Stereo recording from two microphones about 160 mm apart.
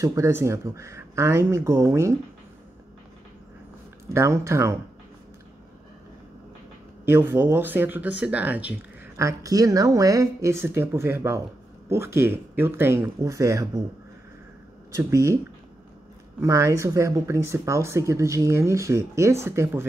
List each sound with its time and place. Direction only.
0.0 s speech: 20° right (ahead or behind)
4.1 s speech: 15° right (ahead or behind)
7.1 s speech: 15° right (ahead or behind)
14.9 s speech: 20° right (ahead or behind)
16.3 s speech: 20° right (ahead or behind)